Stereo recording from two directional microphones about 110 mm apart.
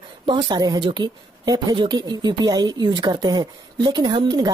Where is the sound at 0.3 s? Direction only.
40° right (ahead or behind).